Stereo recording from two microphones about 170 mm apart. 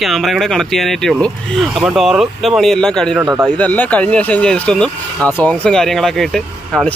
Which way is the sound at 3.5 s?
10° left (ahead or behind).